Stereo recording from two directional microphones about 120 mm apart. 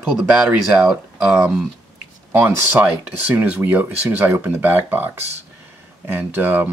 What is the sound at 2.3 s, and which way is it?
Speech, 20° right (ahead or behind).